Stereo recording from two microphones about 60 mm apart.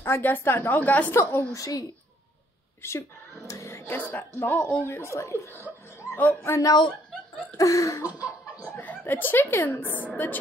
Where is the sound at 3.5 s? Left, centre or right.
Left.